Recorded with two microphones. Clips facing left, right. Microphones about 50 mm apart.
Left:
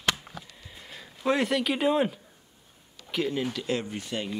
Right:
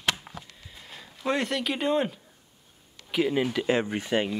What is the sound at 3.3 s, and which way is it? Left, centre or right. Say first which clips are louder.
Speech: right 5 dB; right.